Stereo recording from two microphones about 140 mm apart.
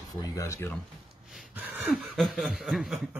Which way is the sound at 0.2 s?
20° left (ahead or behind).